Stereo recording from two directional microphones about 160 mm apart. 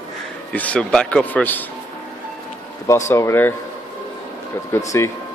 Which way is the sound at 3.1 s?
15° left (ahead or behind).